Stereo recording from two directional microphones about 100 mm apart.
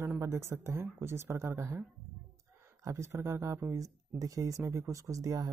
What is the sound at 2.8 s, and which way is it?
Speech, 30° right (ahead or behind).